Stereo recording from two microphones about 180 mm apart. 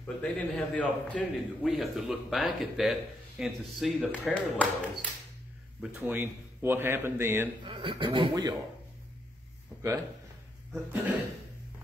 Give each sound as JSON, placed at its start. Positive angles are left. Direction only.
{"t": 0.0, "sound": "a man's voice", "side_deg": 5}
{"t": 5.9, "sound": "speech", "side_deg": -10}
{"t": 7.6, "sound": "speech", "side_deg": -30}
{"t": 10.7, "sound": "speech", "side_deg": -10}